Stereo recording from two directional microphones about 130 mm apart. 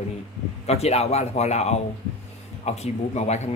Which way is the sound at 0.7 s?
55° left (ahead or behind).